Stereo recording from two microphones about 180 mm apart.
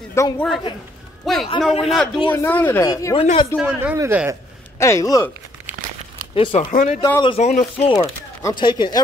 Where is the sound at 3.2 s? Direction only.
30° left (ahead or behind).